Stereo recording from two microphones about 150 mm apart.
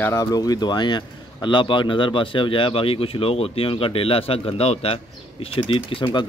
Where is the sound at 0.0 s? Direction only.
20° left (ahead or behind).